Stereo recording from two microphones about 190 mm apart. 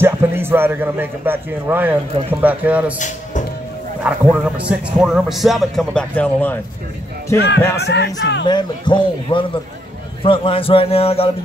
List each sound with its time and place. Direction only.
0.0 s a man's voice: 10° right (ahead or behind)
4.0 s a man's voice: 5° right (ahead or behind)
7.3 s speech: 60° left (ahead or behind)
8.5 s a man's voice: 25° left (ahead or behind)